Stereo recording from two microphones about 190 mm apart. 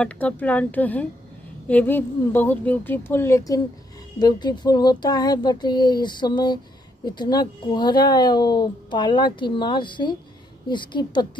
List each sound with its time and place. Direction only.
0.0 s speech: 10° left (ahead or behind); by 11.2 s 25° left (ahead or behind)